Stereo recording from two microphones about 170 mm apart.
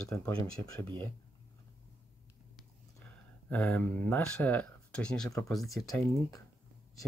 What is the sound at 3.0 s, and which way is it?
Speech, 10° left (ahead or behind).